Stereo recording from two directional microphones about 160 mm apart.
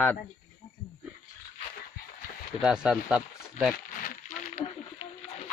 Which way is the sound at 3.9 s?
60° left (ahead or behind).